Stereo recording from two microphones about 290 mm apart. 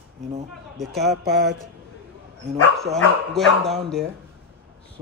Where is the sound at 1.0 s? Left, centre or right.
Right.